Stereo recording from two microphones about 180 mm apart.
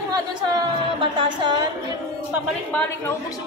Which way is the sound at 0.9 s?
25° right (ahead or behind).